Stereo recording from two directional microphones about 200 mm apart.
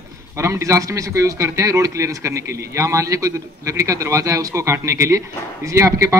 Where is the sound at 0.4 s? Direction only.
15° right (ahead or behind).